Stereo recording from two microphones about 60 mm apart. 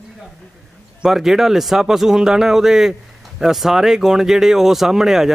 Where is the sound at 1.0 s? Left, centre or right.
Centre.